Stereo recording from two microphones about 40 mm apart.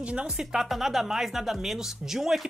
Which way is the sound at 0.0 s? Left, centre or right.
Right.